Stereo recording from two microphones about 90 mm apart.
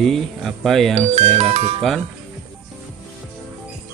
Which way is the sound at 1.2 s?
90° right.